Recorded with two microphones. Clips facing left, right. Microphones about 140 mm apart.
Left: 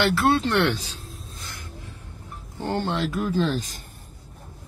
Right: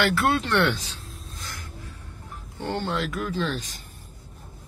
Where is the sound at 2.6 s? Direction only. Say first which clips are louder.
Left 2 dB; 40° left (ahead or behind).